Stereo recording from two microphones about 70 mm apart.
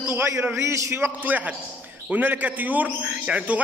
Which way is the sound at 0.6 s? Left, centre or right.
Right.